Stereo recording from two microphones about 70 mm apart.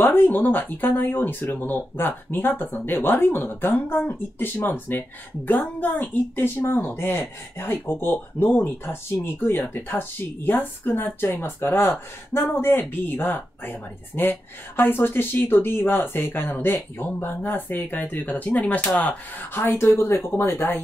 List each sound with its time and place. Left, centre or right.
0.0 s speech: left
19.7 s speech: left